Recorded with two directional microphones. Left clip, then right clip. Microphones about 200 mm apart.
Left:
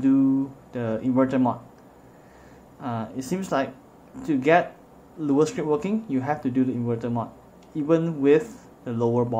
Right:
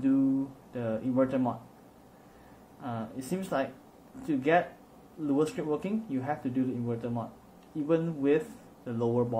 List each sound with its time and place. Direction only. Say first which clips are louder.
0.7 s speech: left 5 dB; 15° left (ahead or behind)
2.8 s speech: left 7 dB; 15° left (ahead or behind)